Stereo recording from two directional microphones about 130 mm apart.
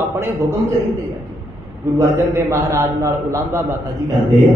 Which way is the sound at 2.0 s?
20° right (ahead or behind).